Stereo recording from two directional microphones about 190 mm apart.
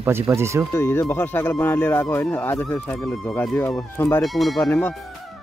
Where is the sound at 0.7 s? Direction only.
15° left (ahead or behind).